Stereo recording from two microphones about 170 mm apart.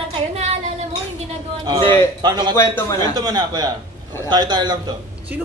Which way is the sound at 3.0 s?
25° right (ahead or behind).